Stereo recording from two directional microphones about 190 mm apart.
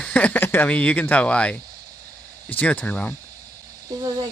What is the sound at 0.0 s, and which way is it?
Speech, 5° left (ahead or behind).